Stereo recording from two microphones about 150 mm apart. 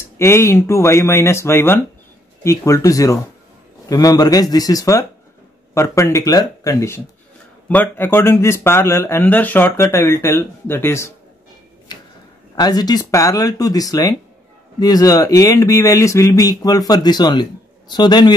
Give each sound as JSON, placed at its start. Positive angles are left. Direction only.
{"t": 0.2, "sound": "speech", "side_deg": 15}
{"t": 12.5, "sound": "speech", "side_deg": 25}